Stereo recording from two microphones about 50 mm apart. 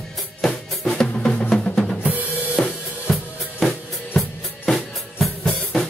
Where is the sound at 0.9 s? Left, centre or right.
Centre.